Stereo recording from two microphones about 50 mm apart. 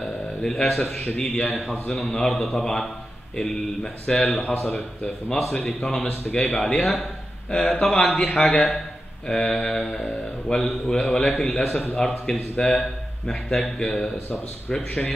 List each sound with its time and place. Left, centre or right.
0.0 s a sound: centre
1.0 s a man's voice: centre
1.5 s a man's voice: centre
4.6 s a man's voice: left
11.5 s a man's voice: centre
11.9 s a man's voice: centre